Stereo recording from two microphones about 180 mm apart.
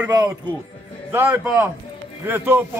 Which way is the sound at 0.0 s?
15° right (ahead or behind).